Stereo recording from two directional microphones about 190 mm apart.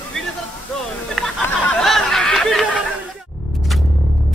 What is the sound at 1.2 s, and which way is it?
Music, centre (ahead or behind).